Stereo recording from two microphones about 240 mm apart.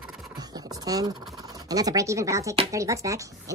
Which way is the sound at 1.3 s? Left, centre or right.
Centre.